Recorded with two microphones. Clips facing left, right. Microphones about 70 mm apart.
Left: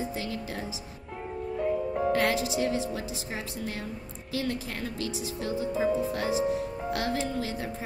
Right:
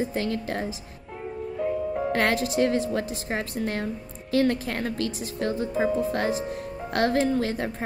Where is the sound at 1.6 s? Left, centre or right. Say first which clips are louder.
Right 1 dB; centre.